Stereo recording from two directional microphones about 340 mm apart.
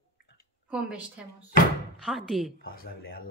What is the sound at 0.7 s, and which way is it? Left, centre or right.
A woman's voice, centre.